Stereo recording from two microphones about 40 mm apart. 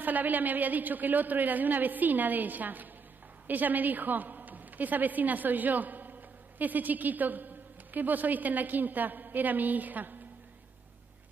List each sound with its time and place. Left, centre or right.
0.0 s a woman's voice: right